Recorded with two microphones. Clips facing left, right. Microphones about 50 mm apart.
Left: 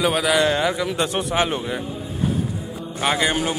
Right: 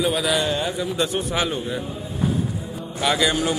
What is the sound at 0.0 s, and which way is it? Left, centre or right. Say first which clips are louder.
A man's voice: left 3 dB; left.